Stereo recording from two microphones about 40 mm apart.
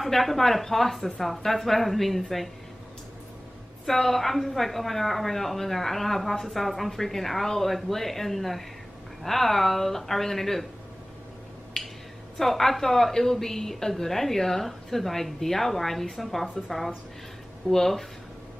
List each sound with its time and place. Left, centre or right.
0.0 s a woman's voice: centre
3.8 s a woman's voice: centre
12.4 s a woman's voice: centre